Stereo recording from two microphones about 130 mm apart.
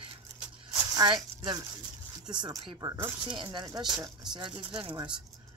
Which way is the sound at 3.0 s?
35° right (ahead or behind).